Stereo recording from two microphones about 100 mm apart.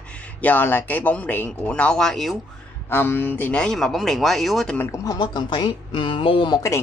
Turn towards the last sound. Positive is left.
turn(degrees=30)  # may be behind; listen again after turning